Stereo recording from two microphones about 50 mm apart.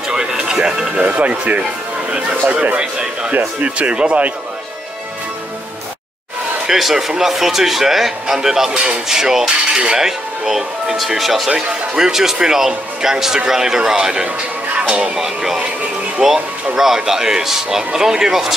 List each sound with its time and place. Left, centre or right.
0.1 s music: centre
1.0 s a man's voice: right
6.7 s speech: centre
11.5 s speech: centre
15.1 s speech: centre